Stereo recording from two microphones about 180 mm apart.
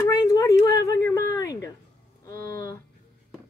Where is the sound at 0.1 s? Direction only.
20° left (ahead or behind).